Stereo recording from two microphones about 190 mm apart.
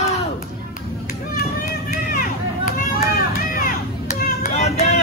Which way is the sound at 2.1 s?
50° left (ahead or behind).